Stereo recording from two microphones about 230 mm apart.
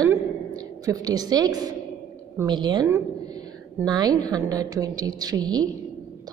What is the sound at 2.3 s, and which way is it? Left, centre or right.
A woman's voice, centre.